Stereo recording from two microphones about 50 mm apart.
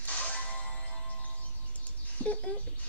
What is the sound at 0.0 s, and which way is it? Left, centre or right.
Music, left.